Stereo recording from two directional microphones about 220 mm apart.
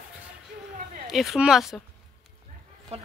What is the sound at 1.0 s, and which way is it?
Speech, centre (ahead or behind).